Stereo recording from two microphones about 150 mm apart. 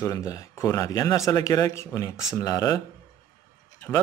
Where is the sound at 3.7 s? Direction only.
15° left (ahead or behind).